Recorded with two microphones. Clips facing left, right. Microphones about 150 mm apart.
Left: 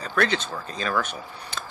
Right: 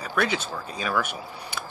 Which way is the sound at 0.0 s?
10° right (ahead or behind).